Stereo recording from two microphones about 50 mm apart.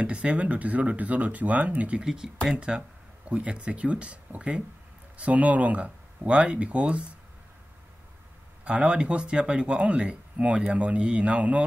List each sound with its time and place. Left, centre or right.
0.0 s speech: right
2.0 s speech: centre
8.6 s speech: right